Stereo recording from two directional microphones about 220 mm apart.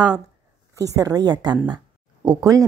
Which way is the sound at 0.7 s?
15° right (ahead or behind).